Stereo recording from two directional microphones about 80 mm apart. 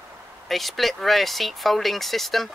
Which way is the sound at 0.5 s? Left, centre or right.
Centre.